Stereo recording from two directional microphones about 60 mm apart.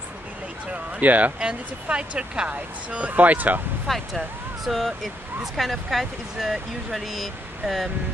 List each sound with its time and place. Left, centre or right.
0.7 s speech: right
3.8 s speech: centre